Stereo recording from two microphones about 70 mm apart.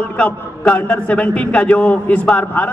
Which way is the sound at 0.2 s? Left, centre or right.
Centre.